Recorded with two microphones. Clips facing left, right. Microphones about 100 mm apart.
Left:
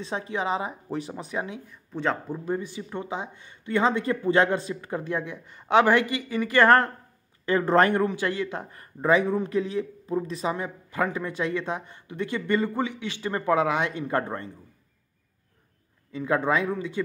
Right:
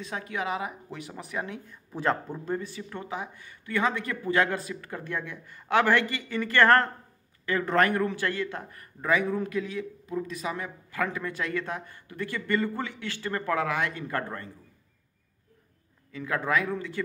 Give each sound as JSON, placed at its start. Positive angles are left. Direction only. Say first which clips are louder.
{"t": 0.0, "sound": "a man's voice", "louder": "left 4 dB", "side_deg": 25}
{"t": 1.9, "sound": "speech", "louder": "even", "side_deg": -5}
{"t": 2.2, "sound": "a man's voice", "louder": "left 3 dB", "side_deg": 10}
{"t": 7.4, "sound": "a man's voice", "louder": "left 4 dB", "side_deg": 30}
{"t": 16.1, "sound": "a man's voice", "louder": "left 4 dB", "side_deg": 25}